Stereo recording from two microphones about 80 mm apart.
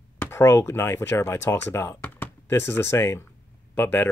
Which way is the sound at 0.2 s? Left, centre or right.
Left.